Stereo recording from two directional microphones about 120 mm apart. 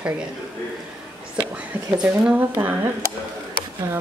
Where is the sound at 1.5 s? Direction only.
10° right (ahead or behind).